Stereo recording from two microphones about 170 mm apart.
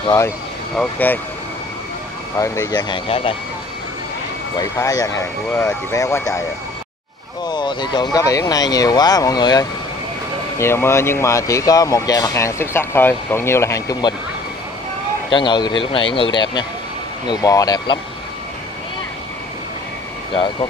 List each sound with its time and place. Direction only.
0.7 s speech: 10° left (ahead or behind)
2.3 s speech: 15° left (ahead or behind); by 3.3 s 30° left (ahead or behind)
4.6 s speech: 20° left (ahead or behind)
7.4 s speech: 25° left (ahead or behind)
15.2 s speech: 30° left (ahead or behind)